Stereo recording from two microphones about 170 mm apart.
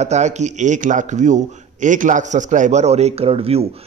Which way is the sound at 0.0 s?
45° right (ahead or behind).